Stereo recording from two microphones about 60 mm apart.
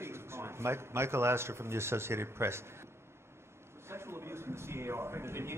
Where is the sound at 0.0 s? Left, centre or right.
Right.